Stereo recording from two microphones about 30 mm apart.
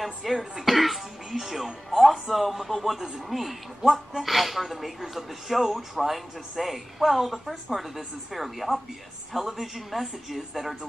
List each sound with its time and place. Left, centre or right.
0.0 s a woman's voice: centre